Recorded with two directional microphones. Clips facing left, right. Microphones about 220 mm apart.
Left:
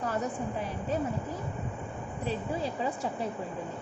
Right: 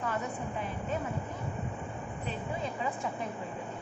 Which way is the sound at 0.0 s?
40° left (ahead or behind).